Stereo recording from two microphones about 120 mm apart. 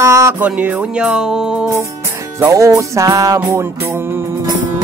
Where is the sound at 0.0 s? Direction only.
25° right (ahead or behind).